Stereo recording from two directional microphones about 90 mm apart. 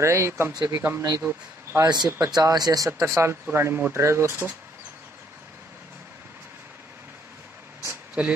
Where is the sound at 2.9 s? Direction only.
30° right (ahead or behind).